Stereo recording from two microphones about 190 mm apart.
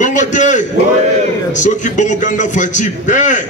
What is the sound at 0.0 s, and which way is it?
A man's voice, 40° left (ahead or behind).